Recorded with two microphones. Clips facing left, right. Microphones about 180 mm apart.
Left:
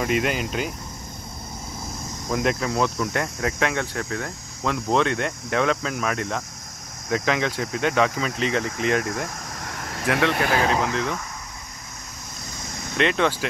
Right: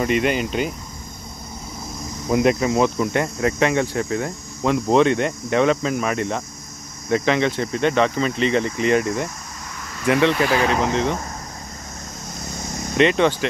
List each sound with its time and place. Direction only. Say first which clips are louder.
0.0 s speech: right 4 dB; centre (ahead or behind)
2.2 s speech: right 6 dB; 10° right (ahead or behind)
9.8 s vehicle: left 3 dB; 65° left (ahead or behind)
10.5 s speech: right 2 dB; centre (ahead or behind)
10.9 s speech: right 5 dB; 30° right (ahead or behind)
12.9 s speech: right 5 dB; centre (ahead or behind)